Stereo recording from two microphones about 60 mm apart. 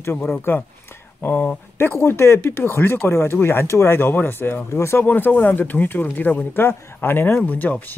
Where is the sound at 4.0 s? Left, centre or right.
Left.